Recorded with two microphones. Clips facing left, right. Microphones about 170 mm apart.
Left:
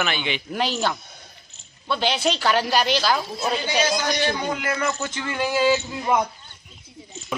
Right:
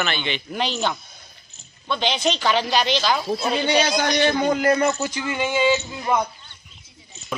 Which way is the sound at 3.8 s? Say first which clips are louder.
Right 1 dB; 60° right (ahead or behind).